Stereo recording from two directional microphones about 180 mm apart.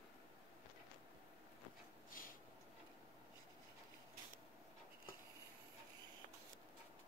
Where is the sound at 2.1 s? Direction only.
50° left (ahead or behind).